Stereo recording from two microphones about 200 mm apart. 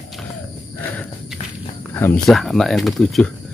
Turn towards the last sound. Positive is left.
turn(degrees=0)  # may be behind; listen again after turning